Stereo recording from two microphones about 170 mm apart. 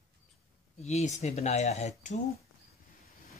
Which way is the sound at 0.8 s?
40° left (ahead or behind).